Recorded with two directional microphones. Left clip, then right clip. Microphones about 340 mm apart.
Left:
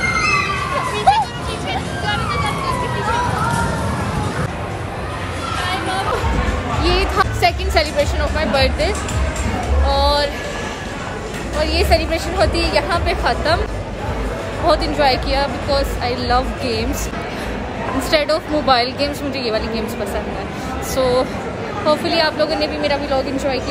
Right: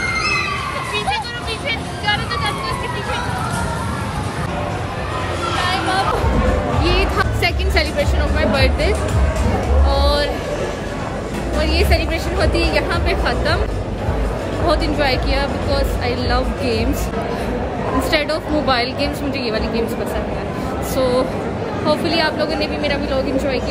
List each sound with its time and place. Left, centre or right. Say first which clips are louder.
5.6 s hubbub: right 3 dB; centre
6.8 s music: left 4 dB; centre
11.6 s a woman's voice: left 3 dB; centre
14.7 s a woman's voice: left 3 dB; centre
18.1 s a woman's voice: left 5 dB; centre
20.9 s a woman's voice: left 1 dB; centre